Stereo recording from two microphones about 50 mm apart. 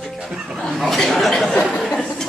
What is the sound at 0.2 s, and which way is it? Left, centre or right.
Speech, centre.